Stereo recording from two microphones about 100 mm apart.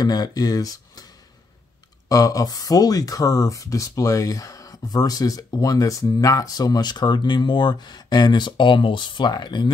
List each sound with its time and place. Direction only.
0.0 s speech: 40° left (ahead or behind)
2.0 s speech: 35° left (ahead or behind)